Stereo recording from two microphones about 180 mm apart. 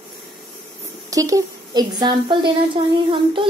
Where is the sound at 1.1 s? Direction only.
20° right (ahead or behind).